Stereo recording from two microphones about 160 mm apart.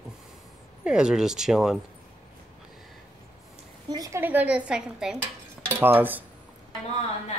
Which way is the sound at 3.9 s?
25° right (ahead or behind).